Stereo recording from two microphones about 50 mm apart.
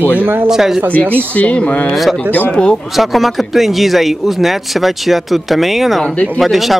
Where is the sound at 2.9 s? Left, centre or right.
Centre.